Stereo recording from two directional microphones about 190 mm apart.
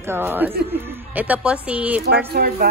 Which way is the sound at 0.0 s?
10° right (ahead or behind).